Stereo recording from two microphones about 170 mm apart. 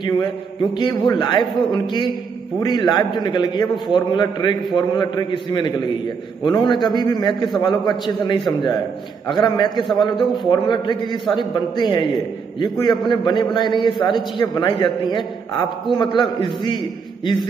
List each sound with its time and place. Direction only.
0.7 s a man's voice: 25° left (ahead or behind)
10.1 s a man's voice: centre (ahead or behind)
10.5 s a man's voice: 25° left (ahead or behind)